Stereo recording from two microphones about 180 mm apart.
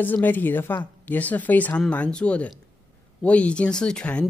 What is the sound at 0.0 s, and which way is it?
Speech, 10° left (ahead or behind).